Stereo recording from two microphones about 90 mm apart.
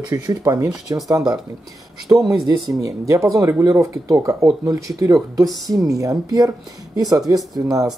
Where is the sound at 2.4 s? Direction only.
40° right (ahead or behind).